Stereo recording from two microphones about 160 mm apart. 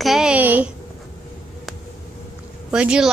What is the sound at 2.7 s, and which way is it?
Speech, 5° right (ahead or behind).